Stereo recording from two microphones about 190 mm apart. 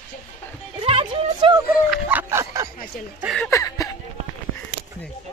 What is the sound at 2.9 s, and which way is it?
Speech, 45° left (ahead or behind).